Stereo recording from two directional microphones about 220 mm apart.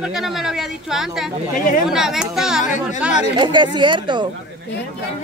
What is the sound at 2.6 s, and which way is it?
Speech, 35° left (ahead or behind).